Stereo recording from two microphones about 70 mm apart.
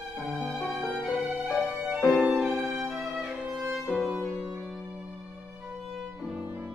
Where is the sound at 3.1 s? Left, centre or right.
Centre.